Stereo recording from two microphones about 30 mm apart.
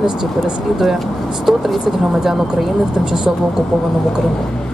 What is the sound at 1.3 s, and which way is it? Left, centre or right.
Speech, centre.